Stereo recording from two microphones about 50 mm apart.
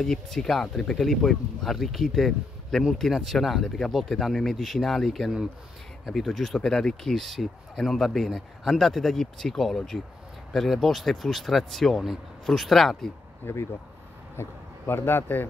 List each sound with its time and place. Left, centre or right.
0.0 s speech: centre
6.6 s speech: centre
13.4 s speech: left